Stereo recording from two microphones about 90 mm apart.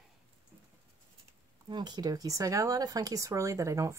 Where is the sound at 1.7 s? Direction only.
50° right (ahead or behind); by 3.9 s 35° right (ahead or behind).